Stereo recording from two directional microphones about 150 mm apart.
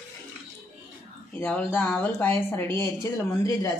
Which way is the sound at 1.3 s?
10° left (ahead or behind).